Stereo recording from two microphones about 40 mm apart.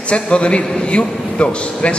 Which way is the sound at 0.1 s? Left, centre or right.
Left.